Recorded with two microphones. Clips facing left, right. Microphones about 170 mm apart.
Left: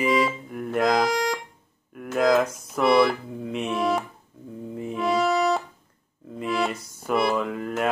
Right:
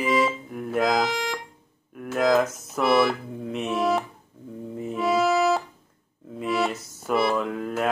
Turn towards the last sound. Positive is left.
turn(degrees=0)  # may be behind; listen again after turning